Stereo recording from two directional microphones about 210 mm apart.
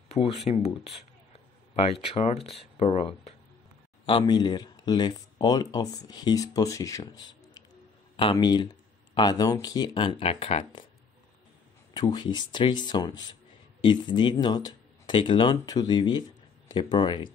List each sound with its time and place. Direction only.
0.1 s speech: 30° left (ahead or behind)
1.9 s speech: 30° left (ahead or behind)
11.9 s speech: 20° left (ahead or behind)